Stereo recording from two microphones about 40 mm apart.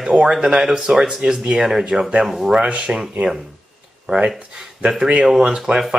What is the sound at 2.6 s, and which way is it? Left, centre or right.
Speech, right.